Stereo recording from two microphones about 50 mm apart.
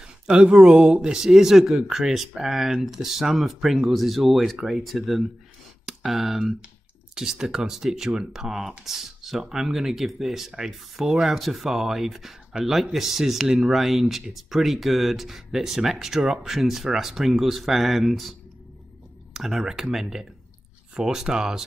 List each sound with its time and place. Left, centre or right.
0.7 s speech: right
1.1 s speech: centre
19.3 s speech: centre